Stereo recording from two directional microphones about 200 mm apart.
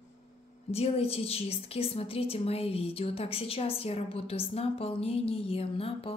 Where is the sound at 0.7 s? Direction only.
30° left (ahead or behind).